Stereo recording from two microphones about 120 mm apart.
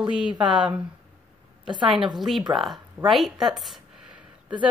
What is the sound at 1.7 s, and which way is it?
Speech, 40° right (ahead or behind).